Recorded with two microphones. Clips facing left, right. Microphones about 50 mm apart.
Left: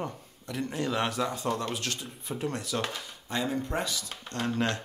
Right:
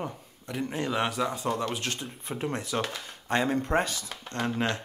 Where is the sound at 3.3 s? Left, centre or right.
Right.